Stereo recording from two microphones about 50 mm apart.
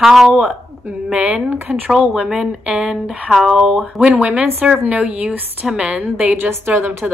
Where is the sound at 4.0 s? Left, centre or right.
Right.